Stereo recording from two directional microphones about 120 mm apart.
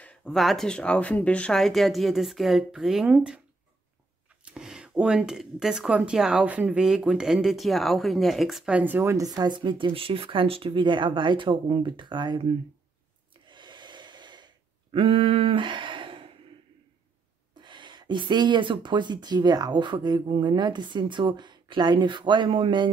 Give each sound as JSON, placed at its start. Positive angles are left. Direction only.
{"t": 0.0, "sound": "speech", "side_deg": 10}
{"t": 4.5, "sound": "speech", "side_deg": -5}
{"t": 13.5, "sound": "gasp", "side_deg": -40}
{"t": 15.0, "sound": "speech", "side_deg": -55}
{"t": 17.6, "sound": "speech", "side_deg": -40}